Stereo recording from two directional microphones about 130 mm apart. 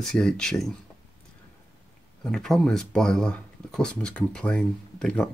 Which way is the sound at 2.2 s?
5° left (ahead or behind).